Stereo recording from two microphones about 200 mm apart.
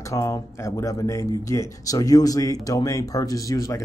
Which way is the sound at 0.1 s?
15° left (ahead or behind).